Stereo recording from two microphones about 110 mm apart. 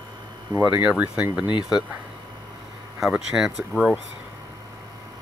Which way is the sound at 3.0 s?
5° right (ahead or behind).